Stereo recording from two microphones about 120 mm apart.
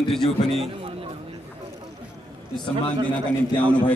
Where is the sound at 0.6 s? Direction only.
50° right (ahead or behind).